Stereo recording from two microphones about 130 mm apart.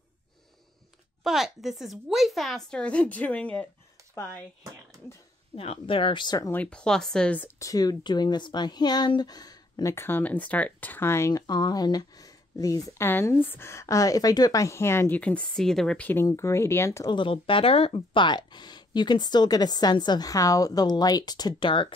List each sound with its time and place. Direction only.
1.2 s speech: 5° right (ahead or behind)
5.6 s speech: 45° left (ahead or behind)
6.5 s speech: 10° left (ahead or behind)
7.5 s speech: 25° left (ahead or behind); by 16.1 s 5° left (ahead or behind)
16.1 s speech: 20° left (ahead or behind)
17.1 s speech: 40° left (ahead or behind)